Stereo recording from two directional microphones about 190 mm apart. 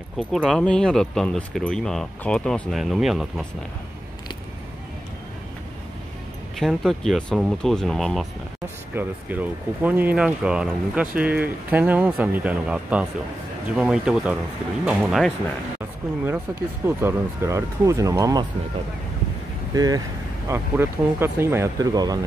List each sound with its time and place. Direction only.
0.2 s speech: centre (ahead or behind)
6.6 s speech: centre (ahead or behind)
16.8 s speech: 15° right (ahead or behind)
19.7 s speech: 20° right (ahead or behind)